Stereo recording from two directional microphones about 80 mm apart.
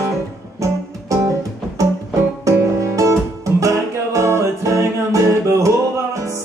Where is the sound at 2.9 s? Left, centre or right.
Right.